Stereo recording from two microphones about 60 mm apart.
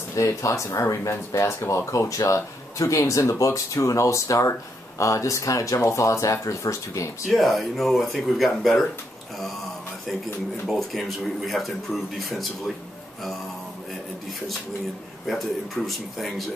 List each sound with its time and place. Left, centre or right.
0.1 s speech: left
5.8 s speech: left
7.2 s speech: centre
10.7 s speech: centre
15.2 s speech: centre